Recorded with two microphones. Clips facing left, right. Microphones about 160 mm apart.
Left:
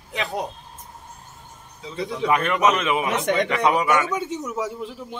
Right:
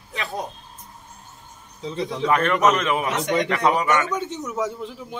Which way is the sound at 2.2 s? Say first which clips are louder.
Right 1 dB; 10° left (ahead or behind).